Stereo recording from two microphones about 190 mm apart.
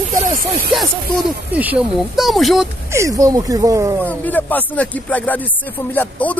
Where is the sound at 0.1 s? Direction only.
45° right (ahead or behind).